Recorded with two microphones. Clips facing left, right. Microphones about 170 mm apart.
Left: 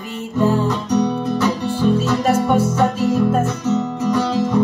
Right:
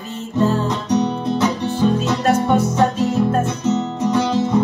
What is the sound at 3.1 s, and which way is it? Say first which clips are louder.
Music: left 1 dB; 25° right (ahead or behind).